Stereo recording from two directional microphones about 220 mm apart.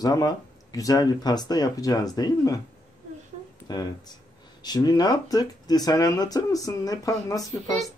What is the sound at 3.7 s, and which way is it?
Speech, 20° left (ahead or behind).